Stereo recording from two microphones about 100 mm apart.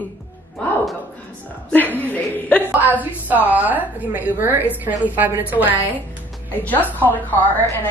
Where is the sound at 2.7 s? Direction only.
15° right (ahead or behind).